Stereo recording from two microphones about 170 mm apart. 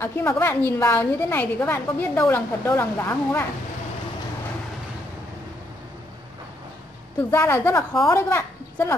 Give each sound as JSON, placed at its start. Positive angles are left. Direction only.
{"t": 0.0, "sound": "a woman's voice", "side_deg": 15}
{"t": 7.2, "sound": "a woman's voice", "side_deg": 15}